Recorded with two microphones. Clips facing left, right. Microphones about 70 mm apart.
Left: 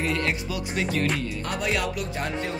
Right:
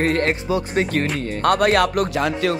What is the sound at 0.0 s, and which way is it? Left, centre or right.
Speech, right.